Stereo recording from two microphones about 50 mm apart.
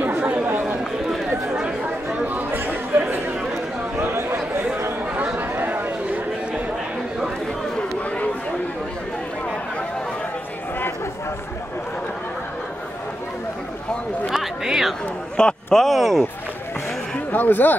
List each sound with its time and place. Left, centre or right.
0.2 s chatter: right
0.5 s chatter: right
2.5 s chatter: right
4.0 s chatter: right
5.4 s chatter: right
14.3 s a sound: centre
15.3 s a sound: centre
17.3 s speech: left